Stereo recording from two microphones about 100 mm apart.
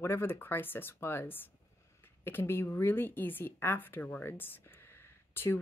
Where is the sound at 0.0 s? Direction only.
25° left (ahead or behind).